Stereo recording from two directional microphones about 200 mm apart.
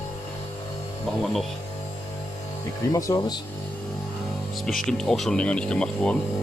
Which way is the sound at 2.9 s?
15° left (ahead or behind).